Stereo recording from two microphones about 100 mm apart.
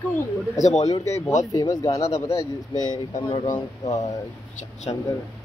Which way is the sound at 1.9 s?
90° left.